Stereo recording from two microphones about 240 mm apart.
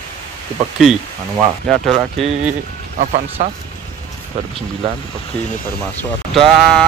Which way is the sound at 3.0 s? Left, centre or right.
Right.